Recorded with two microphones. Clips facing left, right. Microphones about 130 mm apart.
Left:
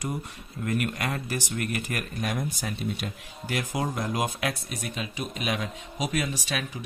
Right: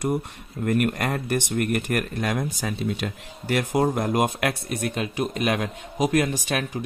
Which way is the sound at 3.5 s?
60° right (ahead or behind).